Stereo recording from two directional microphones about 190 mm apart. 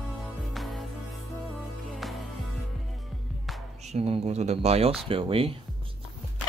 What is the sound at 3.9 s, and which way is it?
Speech, 35° right (ahead or behind).